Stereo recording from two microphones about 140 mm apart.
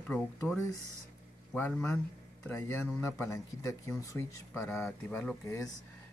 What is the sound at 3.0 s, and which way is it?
Speech, 15° left (ahead or behind).